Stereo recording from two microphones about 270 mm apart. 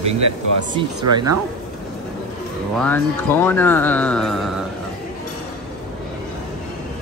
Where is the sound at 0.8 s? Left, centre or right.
Centre.